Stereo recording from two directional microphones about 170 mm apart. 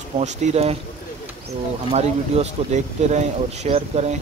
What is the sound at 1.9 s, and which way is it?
Speech, 40° right (ahead or behind).